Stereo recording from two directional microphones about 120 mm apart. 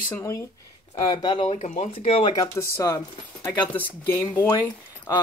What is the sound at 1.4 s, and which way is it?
Speech, 65° left (ahead or behind).